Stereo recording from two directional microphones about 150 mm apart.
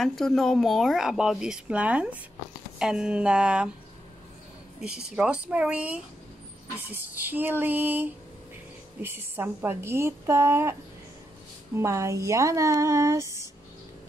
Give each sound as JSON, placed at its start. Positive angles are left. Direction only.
{"t": 0.0, "sound": "a woman's voice", "side_deg": 0}
{"t": 5.1, "sound": "a woman's voice", "side_deg": -10}